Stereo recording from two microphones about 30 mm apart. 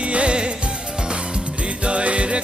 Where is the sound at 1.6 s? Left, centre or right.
Right.